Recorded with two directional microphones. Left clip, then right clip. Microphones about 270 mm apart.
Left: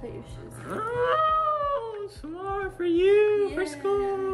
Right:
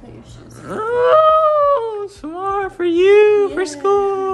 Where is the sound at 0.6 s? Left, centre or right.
Centre.